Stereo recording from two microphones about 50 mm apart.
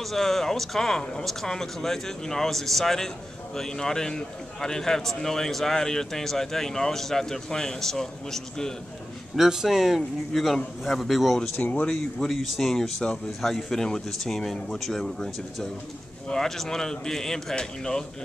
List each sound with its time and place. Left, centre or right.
0.0 s a man's voice: centre
9.3 s a man's voice: centre
11.5 s speech: left
12.3 s a man's voice: centre